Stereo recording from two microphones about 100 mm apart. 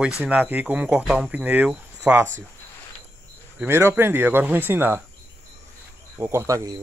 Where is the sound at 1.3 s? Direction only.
15° right (ahead or behind).